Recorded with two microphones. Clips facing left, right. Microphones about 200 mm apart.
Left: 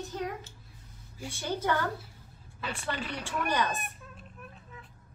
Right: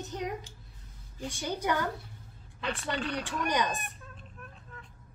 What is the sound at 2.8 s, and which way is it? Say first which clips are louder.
Speech: right 1 dB; 5° left (ahead or behind).